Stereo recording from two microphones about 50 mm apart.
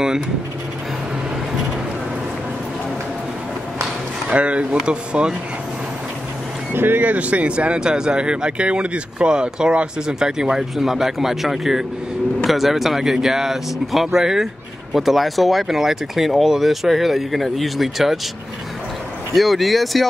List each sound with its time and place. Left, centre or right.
4.3 s speech: right
6.7 s speech: right
7.1 s speech: right; by 18.2 s centre
19.3 s speech: centre